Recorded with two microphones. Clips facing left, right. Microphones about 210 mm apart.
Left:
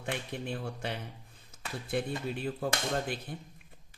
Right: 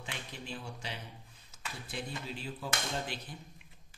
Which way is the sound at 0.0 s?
55° left (ahead or behind).